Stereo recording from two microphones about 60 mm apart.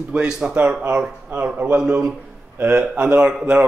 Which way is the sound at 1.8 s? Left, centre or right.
Centre.